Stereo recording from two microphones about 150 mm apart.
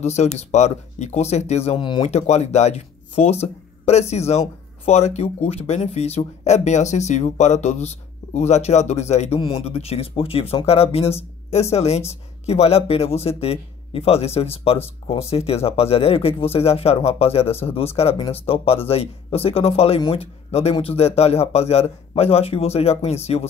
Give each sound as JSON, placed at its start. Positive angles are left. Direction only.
{"t": 0.0, "sound": "speech", "side_deg": 45}
{"t": 1.8, "sound": "speech", "side_deg": 35}
{"t": 2.0, "sound": "speech", "side_deg": 45}